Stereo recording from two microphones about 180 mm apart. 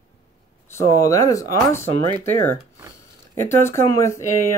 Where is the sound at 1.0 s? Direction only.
20° left (ahead or behind).